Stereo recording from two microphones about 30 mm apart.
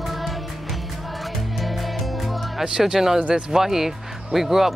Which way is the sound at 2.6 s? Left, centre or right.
Right.